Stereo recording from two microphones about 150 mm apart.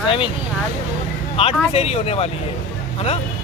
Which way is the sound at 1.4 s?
40° left (ahead or behind).